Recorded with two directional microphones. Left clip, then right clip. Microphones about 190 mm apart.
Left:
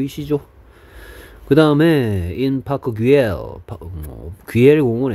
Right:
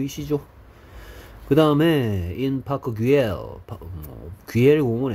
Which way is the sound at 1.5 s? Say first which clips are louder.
Left 5 dB; 35° left (ahead or behind).